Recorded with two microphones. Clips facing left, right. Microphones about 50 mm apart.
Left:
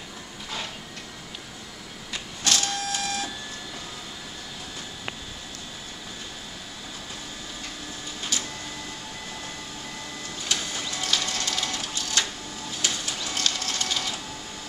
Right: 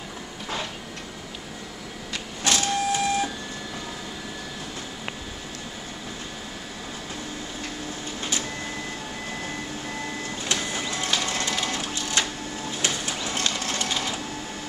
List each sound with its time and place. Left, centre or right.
2.4 s printer: centre
8.2 s printer: right
10.4 s printer: right
12.7 s a sound: right